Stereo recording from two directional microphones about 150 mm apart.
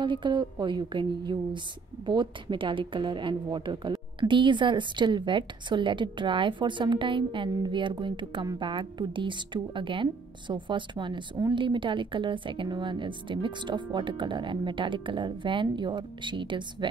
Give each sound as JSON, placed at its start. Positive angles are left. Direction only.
{"t": 0.0, "sound": "a woman's voice", "side_deg": -30}